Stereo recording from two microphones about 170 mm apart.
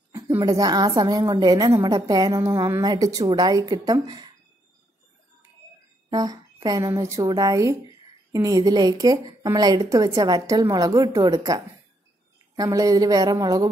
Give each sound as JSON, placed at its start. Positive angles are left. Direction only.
{"t": 0.1, "sound": "a woman's voice", "side_deg": -20}
{"t": 6.0, "sound": "a woman's voice", "side_deg": -20}